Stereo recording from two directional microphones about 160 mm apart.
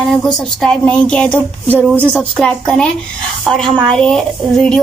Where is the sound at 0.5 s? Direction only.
5° left (ahead or behind).